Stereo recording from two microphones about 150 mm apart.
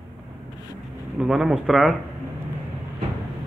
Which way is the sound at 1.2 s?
5° right (ahead or behind).